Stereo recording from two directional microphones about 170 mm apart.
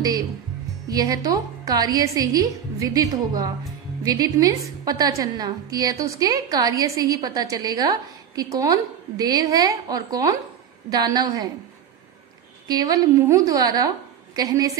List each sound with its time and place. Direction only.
0.8 s a woman's voice: 20° right (ahead or behind)
12.6 s a woman's voice: 20° right (ahead or behind)